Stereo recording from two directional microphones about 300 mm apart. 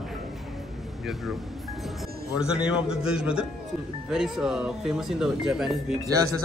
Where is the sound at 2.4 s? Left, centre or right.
Centre.